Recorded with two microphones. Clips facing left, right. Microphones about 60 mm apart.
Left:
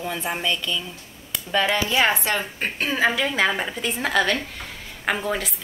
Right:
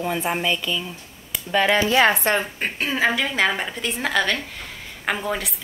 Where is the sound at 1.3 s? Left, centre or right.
Centre.